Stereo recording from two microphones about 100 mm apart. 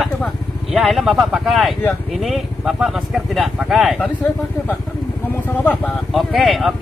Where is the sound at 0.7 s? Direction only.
Centre (ahead or behind).